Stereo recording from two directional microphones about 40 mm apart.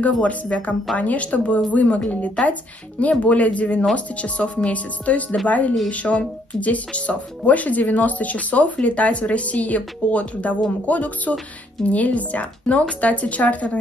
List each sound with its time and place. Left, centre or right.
0.2 s speech: left
3.0 s speech: left